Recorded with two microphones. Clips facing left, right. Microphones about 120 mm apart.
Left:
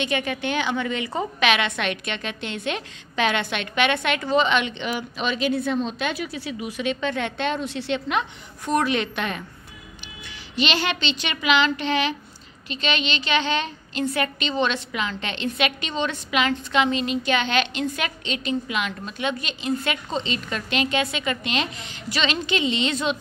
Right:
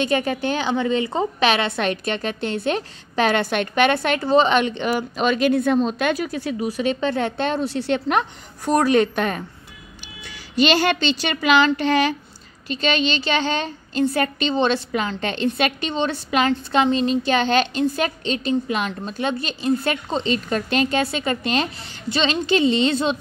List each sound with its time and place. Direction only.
0.0 s a woman's voice: 35° right (ahead or behind)